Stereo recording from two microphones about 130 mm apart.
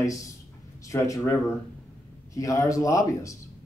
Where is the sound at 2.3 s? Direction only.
25° left (ahead or behind).